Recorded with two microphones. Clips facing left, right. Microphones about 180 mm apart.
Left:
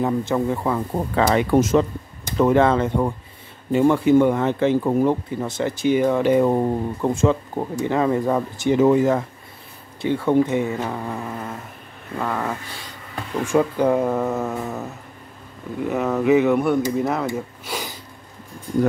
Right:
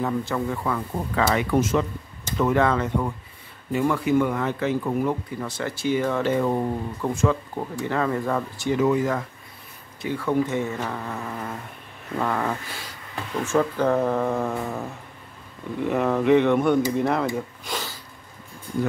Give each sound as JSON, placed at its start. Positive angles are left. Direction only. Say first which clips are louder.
{"t": 0.0, "sound": "speech", "louder": "left 4 dB", "side_deg": 20}
{"t": 13.4, "sound": "speech", "louder": "left 3 dB", "side_deg": 15}